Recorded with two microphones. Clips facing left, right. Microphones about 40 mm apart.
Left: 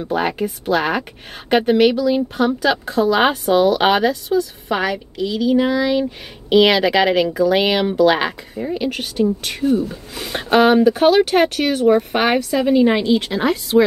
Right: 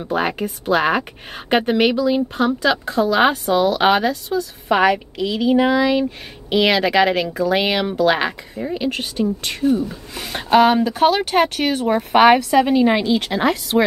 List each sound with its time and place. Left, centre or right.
0.0 s speech: centre
2.1 s speech: centre
4.6 s a woman's voice: centre
6.5 s speech: centre
11.5 s speech: centre
12.9 s speech: centre